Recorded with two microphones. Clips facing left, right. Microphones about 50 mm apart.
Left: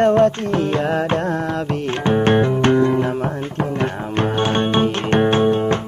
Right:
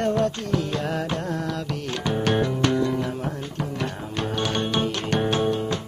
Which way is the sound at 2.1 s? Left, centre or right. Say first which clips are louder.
Left 7 dB; left.